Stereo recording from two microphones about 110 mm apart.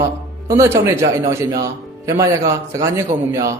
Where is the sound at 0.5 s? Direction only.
25° right (ahead or behind).